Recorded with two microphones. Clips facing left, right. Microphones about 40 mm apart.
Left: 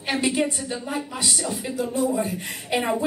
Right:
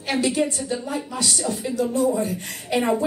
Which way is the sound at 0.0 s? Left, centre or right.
Left.